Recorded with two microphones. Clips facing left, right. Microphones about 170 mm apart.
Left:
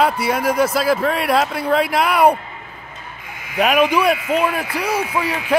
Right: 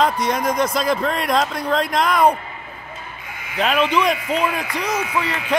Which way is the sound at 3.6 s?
10° left (ahead or behind).